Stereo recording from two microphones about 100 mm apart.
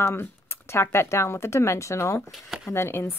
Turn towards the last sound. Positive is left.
turn(degrees=25)  # may be behind; listen again after turning